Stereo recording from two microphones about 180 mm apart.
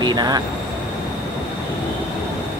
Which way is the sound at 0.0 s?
25° right (ahead or behind).